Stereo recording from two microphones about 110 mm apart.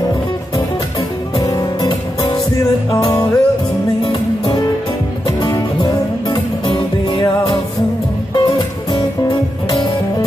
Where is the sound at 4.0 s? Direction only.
45° left (ahead or behind).